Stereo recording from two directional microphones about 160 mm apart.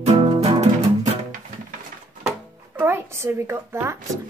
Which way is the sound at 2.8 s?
15° right (ahead or behind).